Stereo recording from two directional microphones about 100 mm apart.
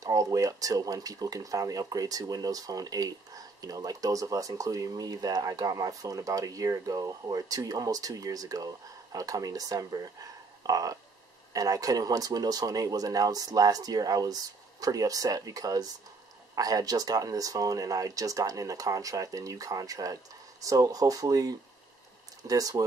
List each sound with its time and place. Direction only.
0.0 s speech: 35° right (ahead or behind)
10.6 s a sound: 40° right (ahead or behind)
11.5 s speech: 35° right (ahead or behind)